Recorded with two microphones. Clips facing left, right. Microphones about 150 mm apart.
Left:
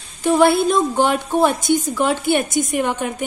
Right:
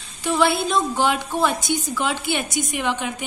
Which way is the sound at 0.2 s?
50° left (ahead or behind).